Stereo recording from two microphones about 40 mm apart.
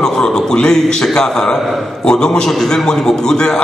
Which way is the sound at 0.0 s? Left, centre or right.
Centre.